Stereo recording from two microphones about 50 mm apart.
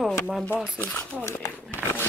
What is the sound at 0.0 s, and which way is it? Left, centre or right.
Speech, centre.